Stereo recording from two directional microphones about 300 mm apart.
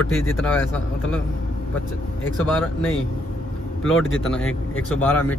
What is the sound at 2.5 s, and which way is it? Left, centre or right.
Speech, centre.